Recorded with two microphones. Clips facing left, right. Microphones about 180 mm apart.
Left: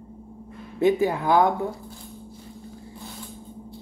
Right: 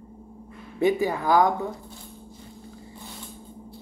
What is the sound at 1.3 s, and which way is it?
Speech, centre (ahead or behind).